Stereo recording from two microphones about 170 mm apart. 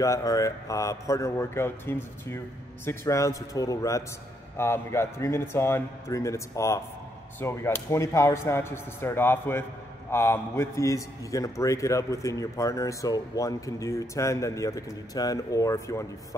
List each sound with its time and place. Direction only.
0.0 s a man's voice: 20° left (ahead or behind)